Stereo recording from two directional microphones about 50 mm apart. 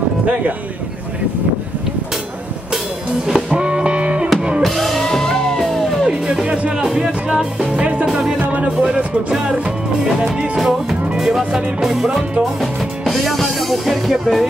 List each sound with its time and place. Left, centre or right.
3.3 s music: centre
4.6 s music: centre
6.4 s music: right
8.4 s music: right
8.8 s music: centre
13.0 s music: centre